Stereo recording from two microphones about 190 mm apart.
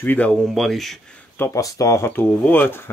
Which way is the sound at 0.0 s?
10° left (ahead or behind).